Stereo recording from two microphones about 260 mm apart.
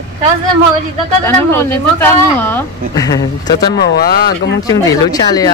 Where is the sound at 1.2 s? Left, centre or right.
Centre.